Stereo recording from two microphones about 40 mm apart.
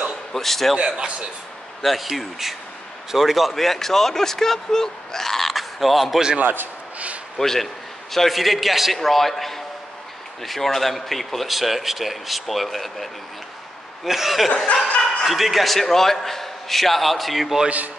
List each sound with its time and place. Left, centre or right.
0.3 s speech: centre
0.7 s a man's voice: right
1.8 s speech: centre
6.4 s a man's voice: right
7.3 s speech: centre
17.6 s a man's voice: right